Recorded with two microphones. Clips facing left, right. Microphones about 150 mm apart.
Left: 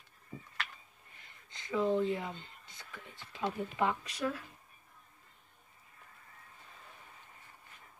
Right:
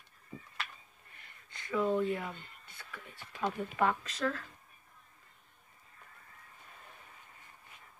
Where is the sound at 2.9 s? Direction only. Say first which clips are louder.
Right 1 dB; 25° left (ahead or behind).